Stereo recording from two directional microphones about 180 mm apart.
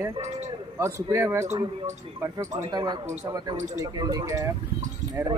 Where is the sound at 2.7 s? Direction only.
25° right (ahead or behind).